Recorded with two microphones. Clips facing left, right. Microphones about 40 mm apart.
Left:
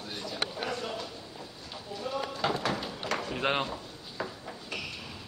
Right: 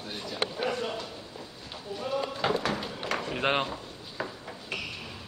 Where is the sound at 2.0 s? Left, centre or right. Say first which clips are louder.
Right 2 dB; centre.